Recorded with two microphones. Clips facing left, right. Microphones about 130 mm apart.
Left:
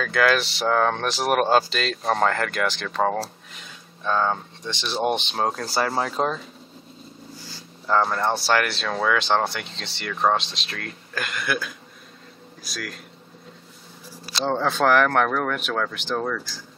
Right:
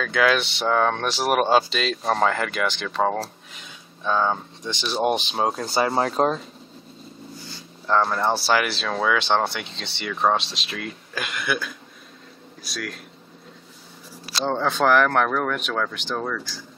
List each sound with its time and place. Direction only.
0.0 s speech: centre (ahead or behind)
5.8 s speech: 25° right (ahead or behind)
7.4 s speech: centre (ahead or behind)
14.2 s speech: centre (ahead or behind)